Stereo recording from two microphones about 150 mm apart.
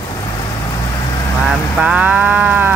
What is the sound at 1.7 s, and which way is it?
Moo, 5° right (ahead or behind).